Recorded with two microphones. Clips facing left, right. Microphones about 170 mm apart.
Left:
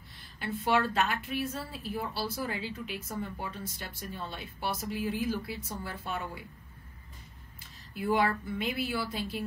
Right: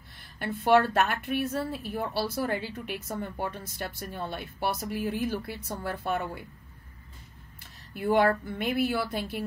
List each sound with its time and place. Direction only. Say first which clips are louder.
0.4 s speech: right 6 dB; 55° right (ahead or behind)
8.0 s speech: right 5 dB; 55° right (ahead or behind)